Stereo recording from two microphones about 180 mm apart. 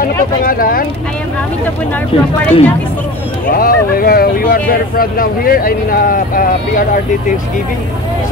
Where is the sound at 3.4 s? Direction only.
55° left (ahead or behind).